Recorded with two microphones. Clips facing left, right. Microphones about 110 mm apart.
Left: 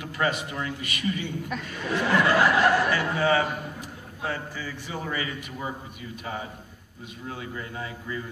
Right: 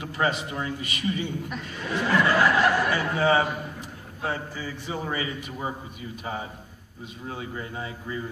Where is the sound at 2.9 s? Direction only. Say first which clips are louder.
Right 1 dB; 25° right (ahead or behind).